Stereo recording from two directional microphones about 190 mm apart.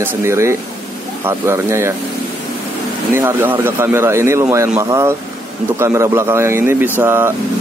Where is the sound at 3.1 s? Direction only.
10° right (ahead or behind).